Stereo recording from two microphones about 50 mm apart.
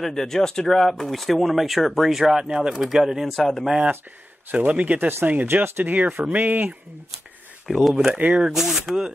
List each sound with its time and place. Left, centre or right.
0.0 s speech: centre
2.4 s speech: centre
3.3 s speech: centre
4.5 s a man's voice: right
4.9 s speech: right
7.6 s speech: centre
8.1 s a man's voice: right
8.5 s speech: centre